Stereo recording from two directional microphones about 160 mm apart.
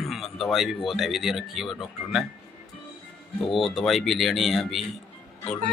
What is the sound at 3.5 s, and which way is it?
Speech, centre (ahead or behind).